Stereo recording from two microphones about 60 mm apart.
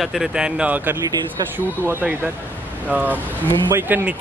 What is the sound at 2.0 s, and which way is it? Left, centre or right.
Speech, right.